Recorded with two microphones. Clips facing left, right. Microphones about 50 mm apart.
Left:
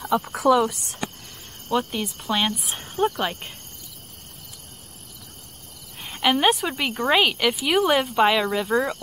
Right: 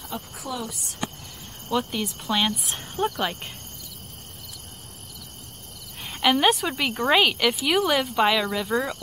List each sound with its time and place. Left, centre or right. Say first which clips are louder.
0.0 s speech: left 14 dB; left
0.7 s speech: left 1 dB; left
1.7 s speech: left 2 dB; centre
6.0 s a woman's voice: even; centre